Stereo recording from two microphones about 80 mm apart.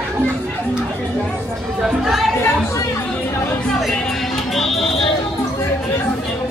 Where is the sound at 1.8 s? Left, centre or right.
Centre.